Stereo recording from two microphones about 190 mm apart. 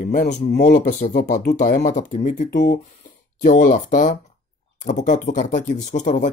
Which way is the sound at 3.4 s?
40° left (ahead or behind).